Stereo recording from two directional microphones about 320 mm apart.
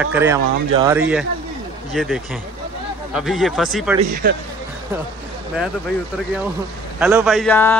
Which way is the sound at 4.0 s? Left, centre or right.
Right.